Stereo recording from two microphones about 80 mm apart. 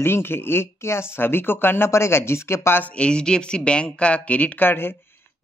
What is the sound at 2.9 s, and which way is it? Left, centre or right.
Speech, centre.